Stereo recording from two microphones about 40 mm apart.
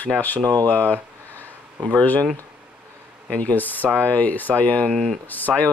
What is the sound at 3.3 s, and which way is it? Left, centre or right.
Speech, left.